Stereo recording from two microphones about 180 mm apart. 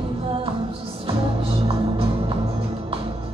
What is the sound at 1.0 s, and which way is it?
Music, 35° right (ahead or behind).